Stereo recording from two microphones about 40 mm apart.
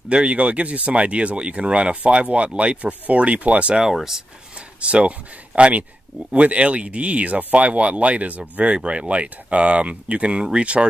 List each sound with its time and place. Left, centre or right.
0.1 s speech: right
4.7 s speech: right
8.7 s speech: right